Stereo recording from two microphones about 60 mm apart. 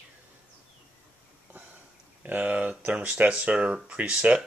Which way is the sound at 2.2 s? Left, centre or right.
Right.